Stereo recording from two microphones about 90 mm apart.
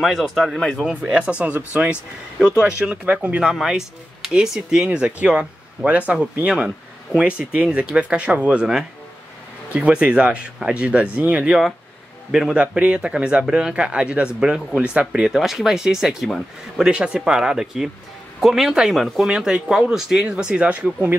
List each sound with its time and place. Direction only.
0.0 s speech: centre (ahead or behind)
1.0 s speech: 15° right (ahead or behind)
3.5 s speech: 5° right (ahead or behind)